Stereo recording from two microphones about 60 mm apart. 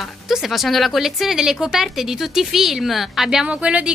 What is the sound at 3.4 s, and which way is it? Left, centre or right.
Speech, centre.